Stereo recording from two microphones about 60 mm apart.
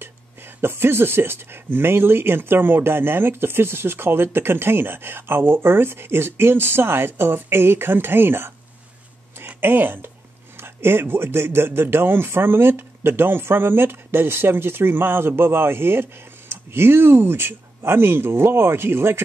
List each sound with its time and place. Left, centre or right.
0.0 s speech: right
9.6 s speech: right